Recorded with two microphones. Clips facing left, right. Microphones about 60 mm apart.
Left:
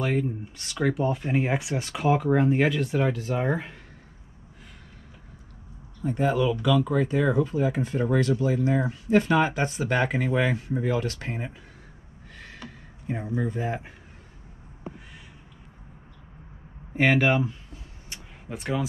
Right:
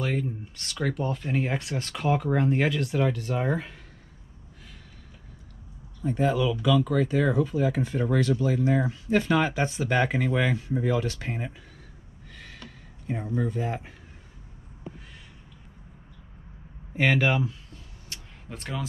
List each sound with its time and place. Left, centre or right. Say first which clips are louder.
0.0 s speech: left 3 dB; centre
3.4 s speech: left 1 dB; centre
6.0 s speech: left 1 dB; left
11.1 s speech: even; centre
12.4 s a sound: left 4 dB; centre
13.6 s speech: left 1 dB; left
17.0 s speech: left 2 dB; centre
18.1 s a sound: left 1 dB; left
18.5 s speech: left 6 dB; centre